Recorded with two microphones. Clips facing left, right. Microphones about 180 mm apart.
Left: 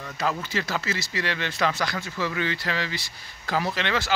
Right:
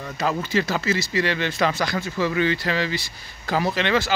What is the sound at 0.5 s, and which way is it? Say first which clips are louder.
Speech: right 6 dB; 5° right (ahead or behind).